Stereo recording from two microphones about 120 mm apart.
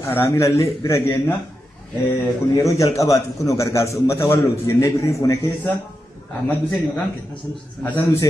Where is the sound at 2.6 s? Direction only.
25° left (ahead or behind).